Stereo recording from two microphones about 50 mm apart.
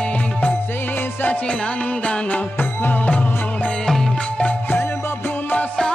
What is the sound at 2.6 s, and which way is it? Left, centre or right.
Music, left.